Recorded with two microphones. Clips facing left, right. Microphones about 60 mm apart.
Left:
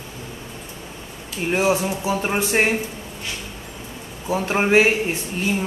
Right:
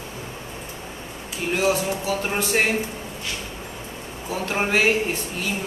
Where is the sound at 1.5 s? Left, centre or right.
Left.